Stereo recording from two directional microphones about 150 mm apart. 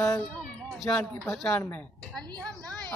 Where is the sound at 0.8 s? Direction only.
15° left (ahead or behind).